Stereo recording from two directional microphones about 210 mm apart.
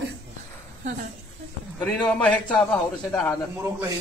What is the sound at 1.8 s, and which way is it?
Speech, 5° left (ahead or behind).